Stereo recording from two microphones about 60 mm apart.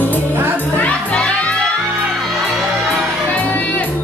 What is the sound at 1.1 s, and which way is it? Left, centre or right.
Music, centre.